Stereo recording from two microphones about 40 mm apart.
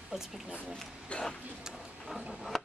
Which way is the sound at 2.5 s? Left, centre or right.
Centre.